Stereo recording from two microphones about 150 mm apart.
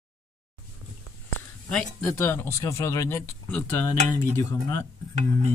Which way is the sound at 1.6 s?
5° left (ahead or behind).